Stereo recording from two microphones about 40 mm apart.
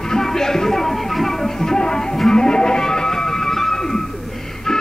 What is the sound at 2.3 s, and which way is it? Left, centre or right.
Music, centre.